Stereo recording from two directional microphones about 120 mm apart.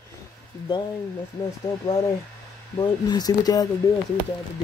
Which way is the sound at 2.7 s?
35° left (ahead or behind).